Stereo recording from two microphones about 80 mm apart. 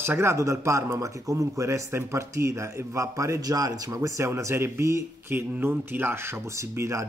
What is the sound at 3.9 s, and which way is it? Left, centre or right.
A man's voice, right.